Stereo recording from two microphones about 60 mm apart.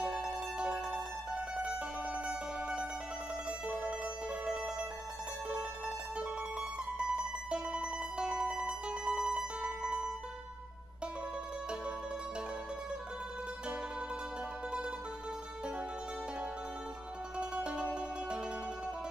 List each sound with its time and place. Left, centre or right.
0.0 s music: centre
1.6 s mandolin: centre
3.4 s music: centre
17.4 s music: centre